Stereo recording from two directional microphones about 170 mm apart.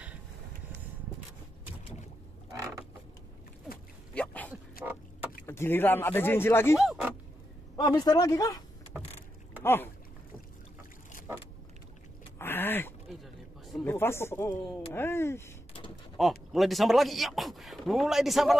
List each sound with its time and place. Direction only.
2.5 s mechanisms: 20° right (ahead or behind)
4.1 s dog: 10° left (ahead or behind)
4.8 s rowboat: 60° left (ahead or behind)
5.5 s speech: 15° left (ahead or behind)
6.8 s speech: centre (ahead or behind)
7.7 s a man's voice: 25° left (ahead or behind)
8.9 s vehicle: 5° right (ahead or behind)
9.6 s speech: 10° left (ahead or behind)
12.4 s a sound: 10° left (ahead or behind)
13.1 s a sound: centre (ahead or behind)
13.8 s speech: 15° left (ahead or behind)
16.2 s speech: centre (ahead or behind)